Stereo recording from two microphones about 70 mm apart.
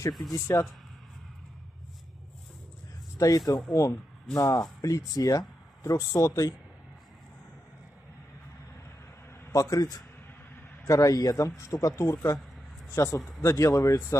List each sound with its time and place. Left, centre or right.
0.3 s speech: left
3.2 s a man's voice: left
9.5 s a man's voice: left